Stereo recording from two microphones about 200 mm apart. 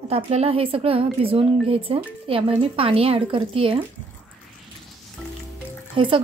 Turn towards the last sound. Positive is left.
turn(degrees=-25)  # may be behind; listen again after turning